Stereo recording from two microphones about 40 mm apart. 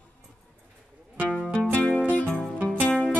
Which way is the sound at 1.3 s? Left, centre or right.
Left.